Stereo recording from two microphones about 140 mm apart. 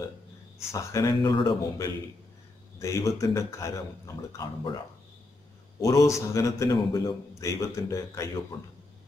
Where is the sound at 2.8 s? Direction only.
20° left (ahead or behind).